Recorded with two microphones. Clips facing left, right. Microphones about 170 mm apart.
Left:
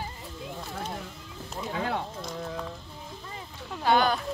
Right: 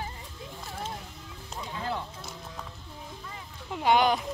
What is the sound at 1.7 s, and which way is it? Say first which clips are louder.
Speech: left 3 dB; 65° left (ahead or behind).